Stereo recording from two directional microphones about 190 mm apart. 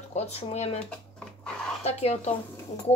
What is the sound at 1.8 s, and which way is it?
Speech, 35° left (ahead or behind).